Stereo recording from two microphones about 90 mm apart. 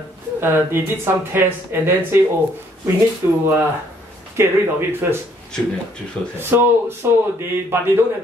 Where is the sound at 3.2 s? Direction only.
30° right (ahead or behind).